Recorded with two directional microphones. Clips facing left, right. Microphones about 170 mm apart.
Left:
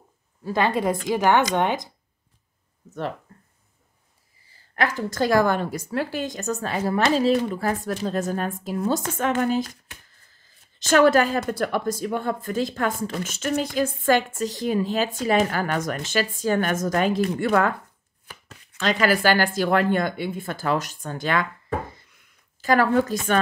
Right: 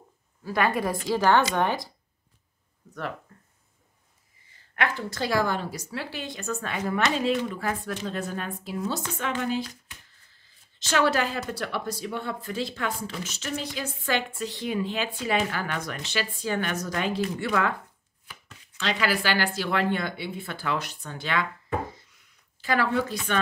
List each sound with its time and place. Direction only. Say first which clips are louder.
0.4 s a woman's voice: left 3 dB; 25° left (ahead or behind)
4.5 s speech: left 3 dB; 40° left (ahead or behind)
18.2 s chopping: left 3 dB; 45° left (ahead or behind)
18.8 s speech: left 6 dB; 45° left (ahead or behind)
22.1 s a sound: left 2 dB; 45° left (ahead or behind)